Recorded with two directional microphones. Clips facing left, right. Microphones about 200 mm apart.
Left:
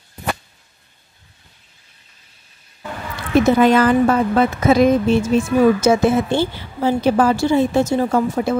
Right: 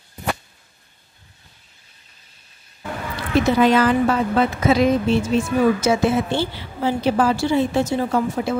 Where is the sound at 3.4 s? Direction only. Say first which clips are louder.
Left 2 dB; 50° left (ahead or behind).